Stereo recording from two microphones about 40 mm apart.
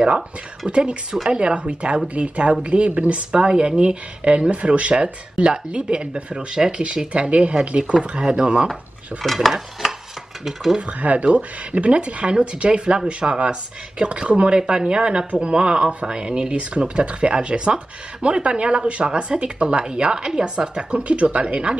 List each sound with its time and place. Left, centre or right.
0.7 s speech: right
3.3 s speech: right
9.2 s dishes: centre
10.4 s speech: centre
10.8 s speech: right